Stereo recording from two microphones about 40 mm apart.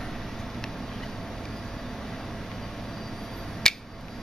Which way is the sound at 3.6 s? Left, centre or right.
Centre.